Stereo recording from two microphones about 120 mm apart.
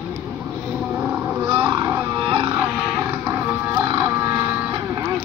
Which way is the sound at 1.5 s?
35° right (ahead or behind).